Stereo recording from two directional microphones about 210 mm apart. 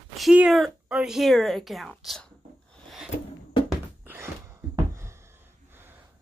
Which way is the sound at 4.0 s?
10° right (ahead or behind).